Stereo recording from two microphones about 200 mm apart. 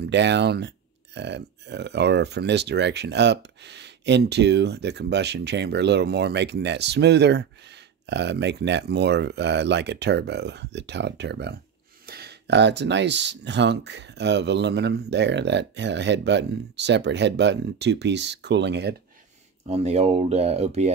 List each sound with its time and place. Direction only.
0.1 s speech: 60° right (ahead or behind)
19.7 s speech: 30° right (ahead or behind)